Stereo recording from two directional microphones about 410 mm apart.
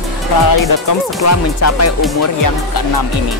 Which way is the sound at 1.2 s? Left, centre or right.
Left.